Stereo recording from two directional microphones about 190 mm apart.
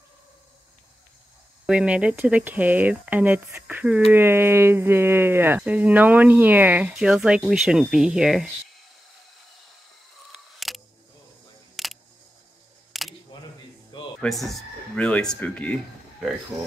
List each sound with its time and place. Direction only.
1.7 s speech: 5° right (ahead or behind)
10.3 s camera: centre (ahead or behind)
11.7 s a sound: centre (ahead or behind)
12.9 s single-lens reflex camera: centre (ahead or behind)
13.3 s single-lens reflex camera: 25° left (ahead or behind)
13.9 s music: 25° left (ahead or behind)
14.4 s speech: 5° left (ahead or behind)